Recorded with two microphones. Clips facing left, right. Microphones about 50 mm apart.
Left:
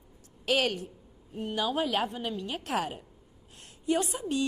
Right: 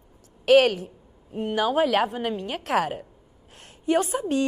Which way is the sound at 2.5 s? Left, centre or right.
Right.